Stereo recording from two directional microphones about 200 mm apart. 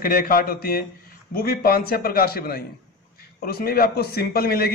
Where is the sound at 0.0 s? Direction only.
45° left (ahead or behind).